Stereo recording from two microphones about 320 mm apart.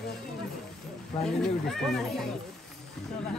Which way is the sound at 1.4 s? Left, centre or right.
Centre.